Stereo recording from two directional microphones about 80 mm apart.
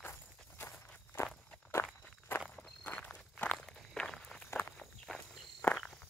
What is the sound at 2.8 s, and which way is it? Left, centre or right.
Walk, centre.